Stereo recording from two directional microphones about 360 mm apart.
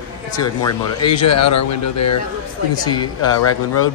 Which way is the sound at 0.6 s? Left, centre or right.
Centre.